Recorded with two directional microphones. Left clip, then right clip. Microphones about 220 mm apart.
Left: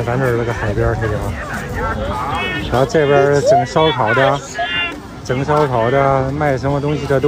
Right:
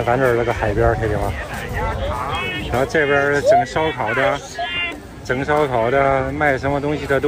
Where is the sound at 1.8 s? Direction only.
40° left (ahead or behind).